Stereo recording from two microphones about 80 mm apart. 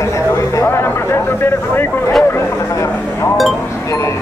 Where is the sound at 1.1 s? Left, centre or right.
Left.